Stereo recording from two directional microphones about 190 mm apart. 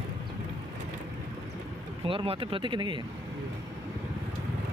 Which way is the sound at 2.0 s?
30° right (ahead or behind).